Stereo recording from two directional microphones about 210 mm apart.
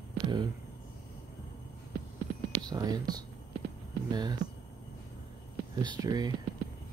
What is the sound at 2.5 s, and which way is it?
Whispering, 20° right (ahead or behind).